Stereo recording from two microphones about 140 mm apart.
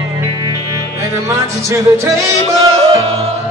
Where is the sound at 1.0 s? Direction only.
20° right (ahead or behind).